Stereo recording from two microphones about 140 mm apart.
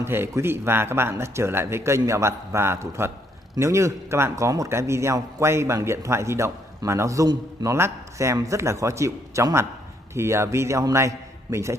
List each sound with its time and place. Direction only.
0.0 s a man's voice: 15° right (ahead or behind)